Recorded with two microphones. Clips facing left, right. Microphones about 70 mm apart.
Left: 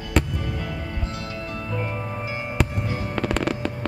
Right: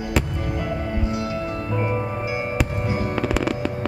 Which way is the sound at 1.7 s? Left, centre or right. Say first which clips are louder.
Right 5 dB; right.